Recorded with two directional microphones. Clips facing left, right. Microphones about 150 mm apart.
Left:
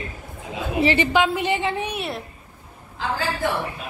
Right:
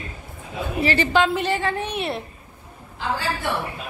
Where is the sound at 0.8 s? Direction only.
20° left (ahead or behind).